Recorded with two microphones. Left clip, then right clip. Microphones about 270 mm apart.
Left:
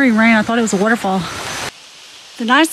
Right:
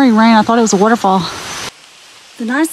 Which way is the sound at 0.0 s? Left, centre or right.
Centre.